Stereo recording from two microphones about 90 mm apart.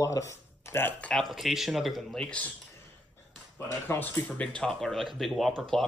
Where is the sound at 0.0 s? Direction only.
35° left (ahead or behind).